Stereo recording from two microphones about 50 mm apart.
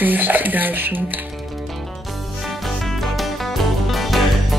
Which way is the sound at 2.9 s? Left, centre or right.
Centre.